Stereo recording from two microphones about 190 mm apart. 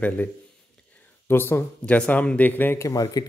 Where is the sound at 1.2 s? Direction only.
10° left (ahead or behind).